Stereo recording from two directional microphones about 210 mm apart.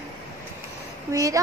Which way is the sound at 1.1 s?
15° right (ahead or behind).